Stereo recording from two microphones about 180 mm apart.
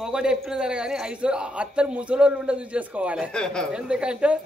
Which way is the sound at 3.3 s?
5° left (ahead or behind).